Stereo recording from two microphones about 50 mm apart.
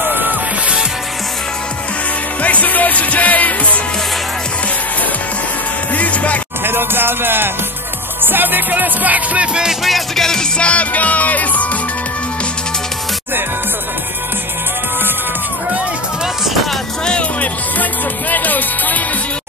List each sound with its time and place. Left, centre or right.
0.1 s music: right
2.4 s music: left
5.9 s music: left
6.6 s music: right
9.5 s speech: centre
9.8 s music: centre
10.6 s music: left
17.0 s music: centre
18.3 s music: left